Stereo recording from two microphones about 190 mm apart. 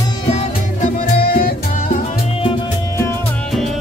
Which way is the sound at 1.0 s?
50° left (ahead or behind).